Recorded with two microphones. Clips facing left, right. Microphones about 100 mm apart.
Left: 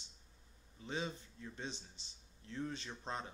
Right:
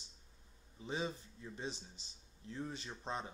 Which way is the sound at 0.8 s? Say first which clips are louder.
Right 2 dB; 15° right (ahead or behind).